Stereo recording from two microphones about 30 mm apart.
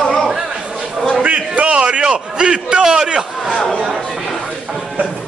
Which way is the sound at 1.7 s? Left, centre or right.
Right.